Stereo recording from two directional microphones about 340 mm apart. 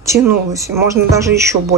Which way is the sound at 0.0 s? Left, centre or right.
Centre.